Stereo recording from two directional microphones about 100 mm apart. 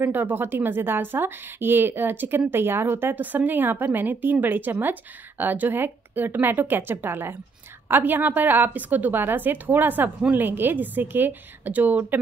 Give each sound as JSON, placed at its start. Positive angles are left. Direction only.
{"t": 0.0, "sound": "a woman's voice", "side_deg": -20}